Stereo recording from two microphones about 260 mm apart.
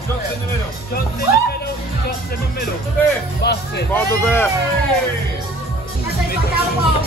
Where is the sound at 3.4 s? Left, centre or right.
Left.